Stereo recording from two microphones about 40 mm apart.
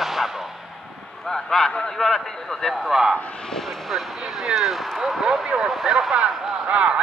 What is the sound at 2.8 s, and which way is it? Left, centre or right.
Speech, centre.